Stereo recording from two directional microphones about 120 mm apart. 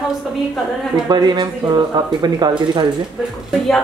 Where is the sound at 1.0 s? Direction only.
35° right (ahead or behind).